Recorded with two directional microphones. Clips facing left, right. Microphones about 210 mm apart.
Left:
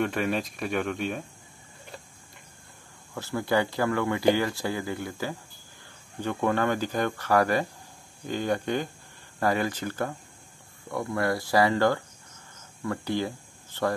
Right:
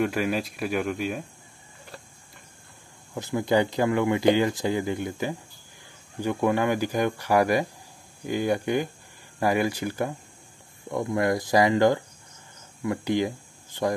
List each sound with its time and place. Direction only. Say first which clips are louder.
0.0 s speech: right 2 dB; 5° right (ahead or behind)
3.2 s speech: right 3 dB; 20° right (ahead or behind)